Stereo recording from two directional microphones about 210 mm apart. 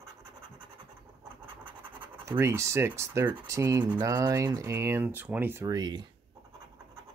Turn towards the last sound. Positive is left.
turn(degrees=-20)  # may be behind; listen again after turning